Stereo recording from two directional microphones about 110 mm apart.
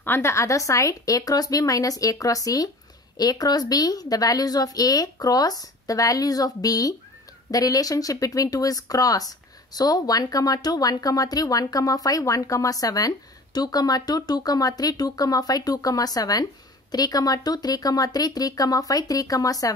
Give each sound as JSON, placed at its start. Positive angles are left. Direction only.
{"t": 0.0, "sound": "speech", "side_deg": 20}